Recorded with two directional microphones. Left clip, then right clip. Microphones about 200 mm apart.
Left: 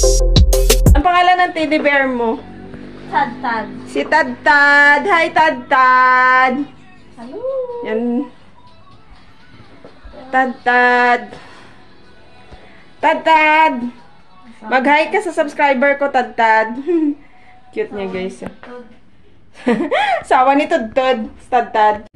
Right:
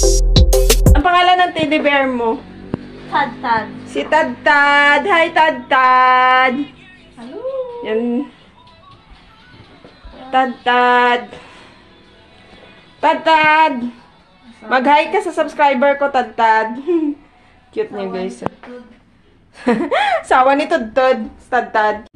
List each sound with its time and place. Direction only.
0.0 s music: centre (ahead or behind)
4.1 s a woman's voice: 15° left (ahead or behind)
7.8 s a woman's voice: 10° left (ahead or behind)
10.3 s a woman's voice: 5° left (ahead or behind)
13.0 s a woman's voice: 5° left (ahead or behind)
19.8 s a woman's voice: 5° left (ahead or behind)